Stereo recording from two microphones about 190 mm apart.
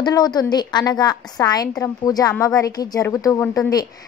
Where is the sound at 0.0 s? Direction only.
20° left (ahead or behind).